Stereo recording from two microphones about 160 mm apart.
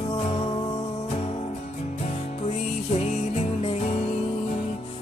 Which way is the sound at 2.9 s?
40° left (ahead or behind).